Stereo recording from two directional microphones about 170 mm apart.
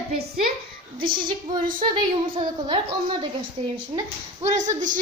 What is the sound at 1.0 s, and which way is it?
Music, 55° right (ahead or behind).